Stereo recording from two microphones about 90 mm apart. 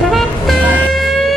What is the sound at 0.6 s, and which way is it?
Music, 15° right (ahead or behind).